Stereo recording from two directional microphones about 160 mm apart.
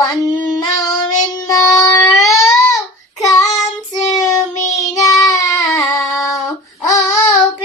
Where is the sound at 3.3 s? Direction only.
20° left (ahead or behind).